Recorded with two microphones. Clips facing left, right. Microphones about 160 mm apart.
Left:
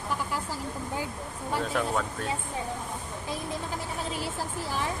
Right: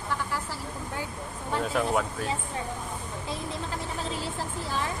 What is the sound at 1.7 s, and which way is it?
Speech, 5° right (ahead or behind).